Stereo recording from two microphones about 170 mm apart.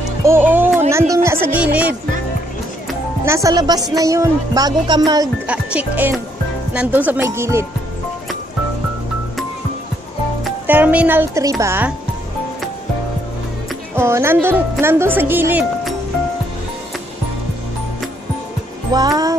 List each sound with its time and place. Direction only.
0.2 s music: 15° right (ahead or behind)
1.1 s speech: 15° right (ahead or behind)
3.3 s music: 20° right (ahead or behind)
5.5 s speech: 5° right (ahead or behind)
10.7 s speech: 10° right (ahead or behind)
13.9 s speech: 15° right (ahead or behind)
18.9 s music: 25° right (ahead or behind)